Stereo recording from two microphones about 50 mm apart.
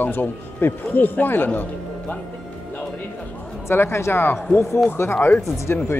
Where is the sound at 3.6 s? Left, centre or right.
Left.